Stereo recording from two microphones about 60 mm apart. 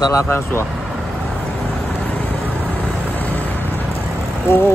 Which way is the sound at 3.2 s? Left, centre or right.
Left.